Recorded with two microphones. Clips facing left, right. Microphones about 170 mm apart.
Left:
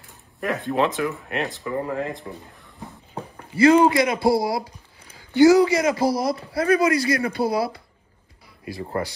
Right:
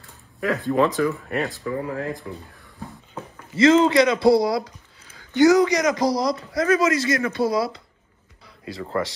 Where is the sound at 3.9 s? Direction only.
25° left (ahead or behind).